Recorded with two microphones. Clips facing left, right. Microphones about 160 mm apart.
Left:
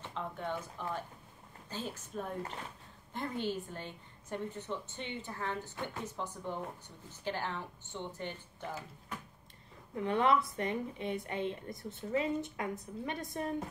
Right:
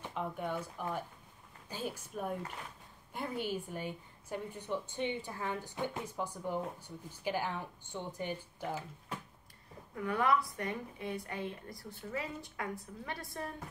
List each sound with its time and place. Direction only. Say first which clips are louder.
0.0 s a woman's voice: right 2 dB; 10° right (ahead or behind)
9.9 s a woman's voice: left 2 dB; 25° left (ahead or behind)